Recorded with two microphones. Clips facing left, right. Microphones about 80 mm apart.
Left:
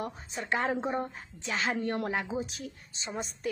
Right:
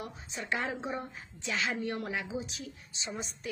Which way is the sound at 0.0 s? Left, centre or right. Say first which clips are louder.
Left 4 dB; left.